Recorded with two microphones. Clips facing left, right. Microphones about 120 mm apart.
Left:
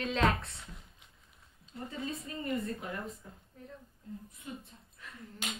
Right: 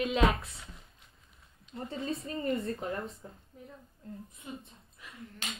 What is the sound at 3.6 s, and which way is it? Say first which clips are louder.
Speech: even; 15° right (ahead or behind).